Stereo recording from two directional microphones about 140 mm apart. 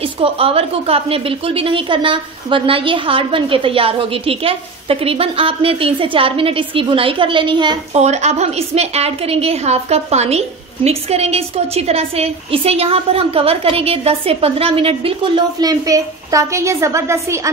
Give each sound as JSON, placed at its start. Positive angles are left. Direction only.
{"t": 0.2, "sound": "a woman's voice", "side_deg": -40}
{"t": 7.9, "sound": "a woman's voice", "side_deg": -50}
{"t": 15.6, "sound": "a woman's voice", "side_deg": -25}